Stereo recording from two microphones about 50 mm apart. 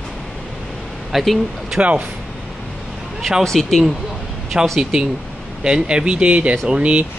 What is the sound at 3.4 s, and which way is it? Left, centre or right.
Speech, centre.